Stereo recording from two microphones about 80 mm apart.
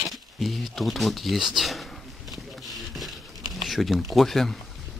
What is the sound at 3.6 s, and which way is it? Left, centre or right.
Speech, centre.